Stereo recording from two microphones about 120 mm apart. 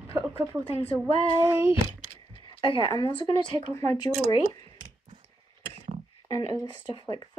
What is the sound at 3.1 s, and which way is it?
Speech, 45° left (ahead or behind).